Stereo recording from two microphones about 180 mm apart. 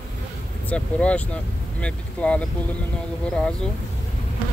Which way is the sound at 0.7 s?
5° left (ahead or behind).